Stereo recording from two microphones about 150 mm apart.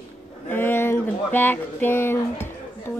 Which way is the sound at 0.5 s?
15° left (ahead or behind).